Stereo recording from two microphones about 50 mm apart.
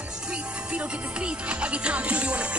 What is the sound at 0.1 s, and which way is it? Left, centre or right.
Music, right.